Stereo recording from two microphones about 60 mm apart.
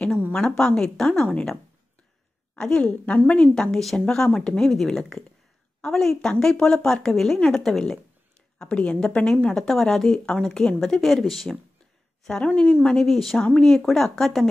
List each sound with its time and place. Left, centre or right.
0.3 s a woman's voice: centre
8.5 s a woman's voice: centre
12.3 s a woman's voice: centre
13.0 s a woman's voice: centre